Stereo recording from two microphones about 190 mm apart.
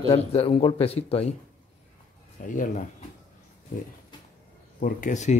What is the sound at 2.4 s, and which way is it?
Speech, 45° left (ahead or behind).